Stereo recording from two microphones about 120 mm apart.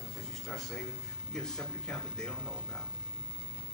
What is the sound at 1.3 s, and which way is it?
Speech, 5° left (ahead or behind).